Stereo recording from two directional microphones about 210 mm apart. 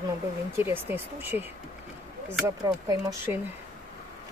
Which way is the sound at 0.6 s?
10° right (ahead or behind).